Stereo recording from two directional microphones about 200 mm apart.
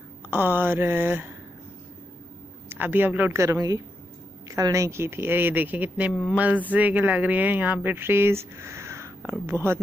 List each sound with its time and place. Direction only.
0.3 s speech: 10° right (ahead or behind)
2.7 s speech: 10° right (ahead or behind)